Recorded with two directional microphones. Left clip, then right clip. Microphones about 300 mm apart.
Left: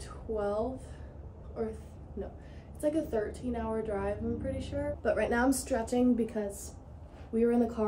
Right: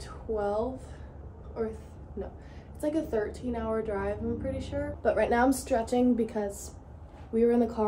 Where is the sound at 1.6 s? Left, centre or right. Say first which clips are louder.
Right 3 dB; centre.